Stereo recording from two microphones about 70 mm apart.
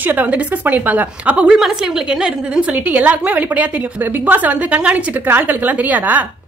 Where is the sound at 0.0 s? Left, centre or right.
Right.